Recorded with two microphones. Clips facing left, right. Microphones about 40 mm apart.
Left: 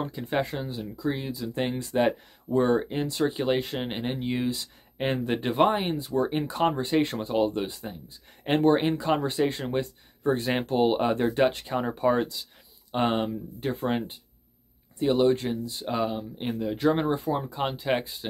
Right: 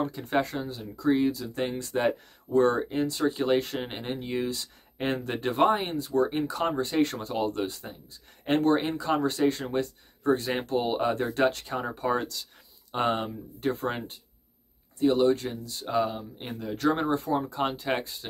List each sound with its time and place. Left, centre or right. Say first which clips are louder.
0.4 s speech: right 2 dB; centre
0.9 s speech: right 7 dB; centre
1.3 s speech: left 2 dB; left
3.0 s speech: even; left
3.3 s speech: right 1 dB; centre
15.0 s speech: even; left; by 18.1 s centre